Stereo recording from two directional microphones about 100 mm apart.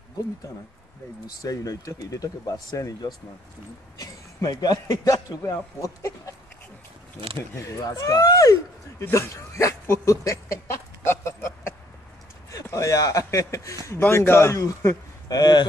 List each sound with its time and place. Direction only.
1.2 s speech: 35° left (ahead or behind)
7.5 s speech: 30° left (ahead or behind)
9.1 s dog: 30° left (ahead or behind)
12.6 s a man's voice: 30° left (ahead or behind)